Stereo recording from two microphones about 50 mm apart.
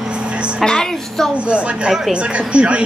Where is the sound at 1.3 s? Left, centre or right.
Right.